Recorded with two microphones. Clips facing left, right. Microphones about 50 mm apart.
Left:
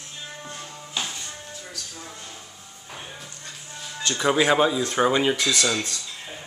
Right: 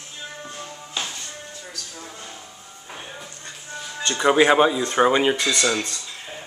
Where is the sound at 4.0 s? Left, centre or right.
Centre.